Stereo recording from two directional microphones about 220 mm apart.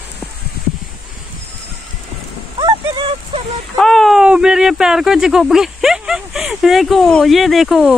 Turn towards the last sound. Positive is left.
turn(degrees=-5)  # may be behind; listen again after turning